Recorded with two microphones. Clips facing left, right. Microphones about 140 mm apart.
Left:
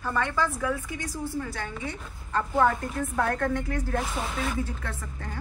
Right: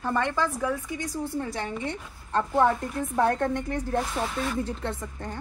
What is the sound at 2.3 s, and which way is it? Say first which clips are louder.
A woman's voice: right 1 dB; 20° right (ahead or behind).